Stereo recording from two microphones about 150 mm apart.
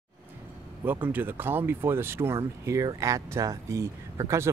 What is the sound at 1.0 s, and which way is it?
Speech, 10° right (ahead or behind).